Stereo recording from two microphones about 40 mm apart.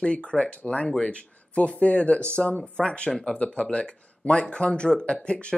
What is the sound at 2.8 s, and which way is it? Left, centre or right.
Speech, left.